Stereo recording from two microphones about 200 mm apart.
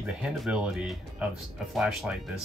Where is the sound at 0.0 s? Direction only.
5° right (ahead or behind).